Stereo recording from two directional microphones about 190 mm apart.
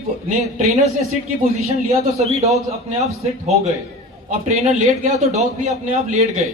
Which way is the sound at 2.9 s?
35° right (ahead or behind).